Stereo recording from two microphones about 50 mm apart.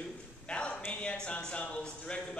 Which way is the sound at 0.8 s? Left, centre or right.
Left.